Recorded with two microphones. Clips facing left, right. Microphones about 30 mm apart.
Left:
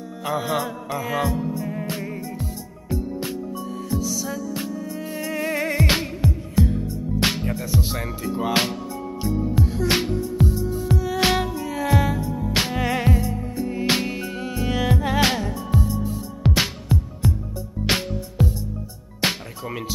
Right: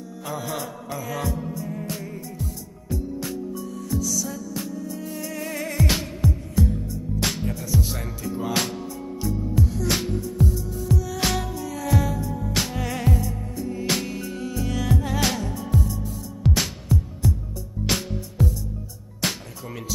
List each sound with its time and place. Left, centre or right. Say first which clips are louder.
0.2 s music: left 6 dB; left
8.2 s speech: left 4 dB; left
10.4 s music: left 2 dB; left